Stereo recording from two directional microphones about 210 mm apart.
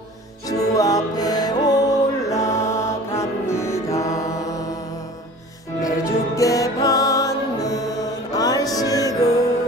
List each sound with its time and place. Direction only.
0.5 s music: 15° left (ahead or behind)
5.8 s music: 15° left (ahead or behind)